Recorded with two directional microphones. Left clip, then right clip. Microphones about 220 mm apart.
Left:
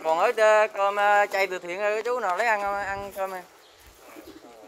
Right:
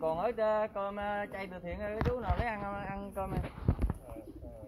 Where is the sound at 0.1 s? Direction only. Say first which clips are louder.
Left 17 dB; 40° left (ahead or behind).